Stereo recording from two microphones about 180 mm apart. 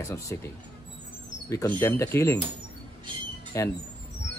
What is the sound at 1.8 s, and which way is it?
Speech, 15° left (ahead or behind).